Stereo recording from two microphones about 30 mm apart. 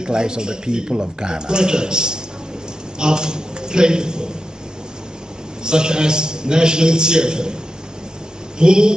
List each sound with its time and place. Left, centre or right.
0.0 s a man's voice: right
5.6 s speech: right
8.5 s speech: right